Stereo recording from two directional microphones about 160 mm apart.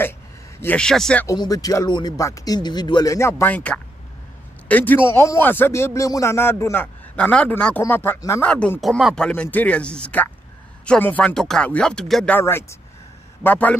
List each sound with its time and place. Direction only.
0.6 s speech: 10° left (ahead or behind)
1.2 s speech: 25° left (ahead or behind); by 12.4 s 5° left (ahead or behind)
12.4 s speech: 15° left (ahead or behind)